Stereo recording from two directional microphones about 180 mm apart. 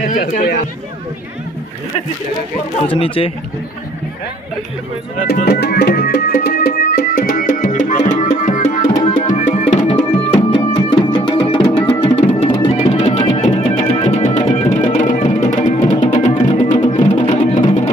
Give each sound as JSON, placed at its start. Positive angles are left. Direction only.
{"t": 0.0, "sound": "speech", "side_deg": 45}
{"t": 2.9, "sound": "speech", "side_deg": 30}
{"t": 5.2, "sound": "music", "side_deg": 60}
{"t": 9.8, "sound": "music", "side_deg": 30}